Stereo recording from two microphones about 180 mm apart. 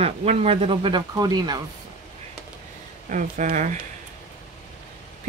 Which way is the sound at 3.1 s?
45° right (ahead or behind).